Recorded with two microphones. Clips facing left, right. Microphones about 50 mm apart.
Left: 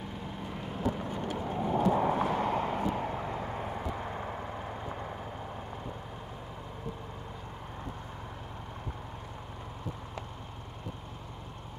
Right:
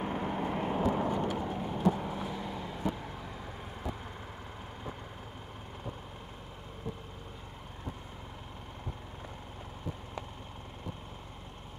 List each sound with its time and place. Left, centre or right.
0.0 s vehicle: right
1.7 s vehicle: left